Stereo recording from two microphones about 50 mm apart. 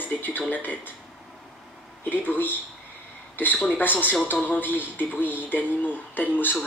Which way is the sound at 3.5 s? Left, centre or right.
Left.